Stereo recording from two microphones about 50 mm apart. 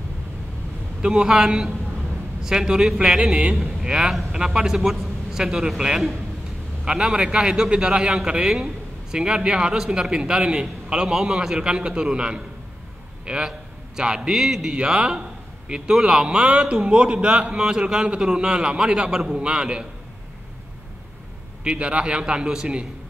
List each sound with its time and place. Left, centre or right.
1.0 s a man's voice: centre
21.6 s a man's voice: right